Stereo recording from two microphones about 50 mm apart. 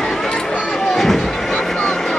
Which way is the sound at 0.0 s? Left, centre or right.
Centre.